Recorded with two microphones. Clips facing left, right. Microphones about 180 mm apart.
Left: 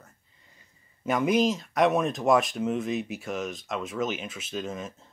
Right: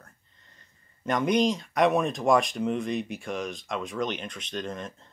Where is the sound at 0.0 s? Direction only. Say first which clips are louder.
Even; 10° left (ahead or behind).